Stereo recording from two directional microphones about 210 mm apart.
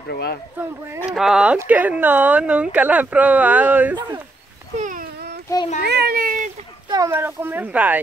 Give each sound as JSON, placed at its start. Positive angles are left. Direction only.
{"t": 0.1, "sound": "speech", "side_deg": 50}
{"t": 0.6, "sound": "speech", "side_deg": -10}
{"t": 4.7, "sound": "dog", "side_deg": -40}
{"t": 5.9, "sound": "a child's voice", "side_deg": -50}
{"t": 6.9, "sound": "speech", "side_deg": -15}